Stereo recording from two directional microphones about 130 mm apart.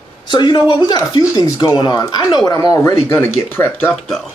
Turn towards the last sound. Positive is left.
turn(degrees=0)  # may be behind; listen again after turning